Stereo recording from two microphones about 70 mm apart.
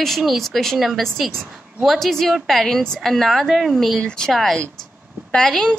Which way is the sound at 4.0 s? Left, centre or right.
Centre.